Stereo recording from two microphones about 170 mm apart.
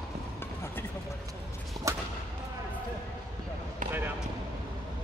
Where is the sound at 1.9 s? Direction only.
20° right (ahead or behind).